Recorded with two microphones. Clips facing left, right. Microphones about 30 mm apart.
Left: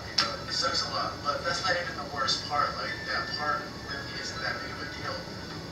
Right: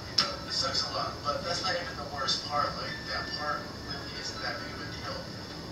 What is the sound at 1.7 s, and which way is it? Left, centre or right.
Speech, centre.